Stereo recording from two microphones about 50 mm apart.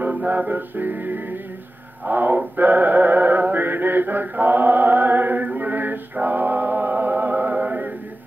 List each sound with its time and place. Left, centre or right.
0.0 s music: right
2.0 s synthetic singing: right